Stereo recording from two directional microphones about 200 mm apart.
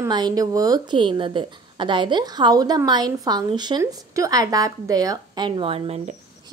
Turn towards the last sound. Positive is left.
turn(degrees=-30)  # may be behind; listen again after turning